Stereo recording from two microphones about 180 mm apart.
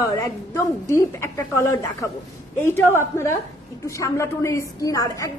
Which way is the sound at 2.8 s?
15° left (ahead or behind).